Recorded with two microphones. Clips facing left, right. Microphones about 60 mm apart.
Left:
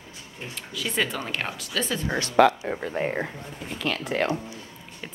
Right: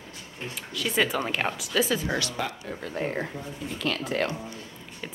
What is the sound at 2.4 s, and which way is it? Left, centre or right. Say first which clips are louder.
Speech: left 14 dB; left.